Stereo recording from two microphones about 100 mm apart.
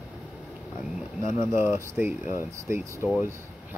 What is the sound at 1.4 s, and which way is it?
Speech, 25° right (ahead or behind).